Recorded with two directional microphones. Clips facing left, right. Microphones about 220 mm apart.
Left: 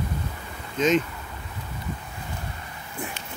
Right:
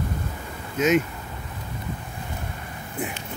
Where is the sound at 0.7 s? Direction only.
10° right (ahead or behind).